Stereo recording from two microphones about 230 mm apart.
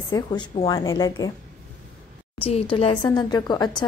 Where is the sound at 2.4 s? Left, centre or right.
Left.